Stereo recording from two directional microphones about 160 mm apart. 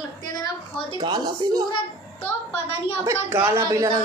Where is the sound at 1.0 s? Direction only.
25° right (ahead or behind).